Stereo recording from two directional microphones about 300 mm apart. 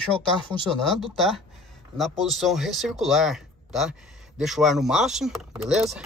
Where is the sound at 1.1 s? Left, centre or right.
Centre.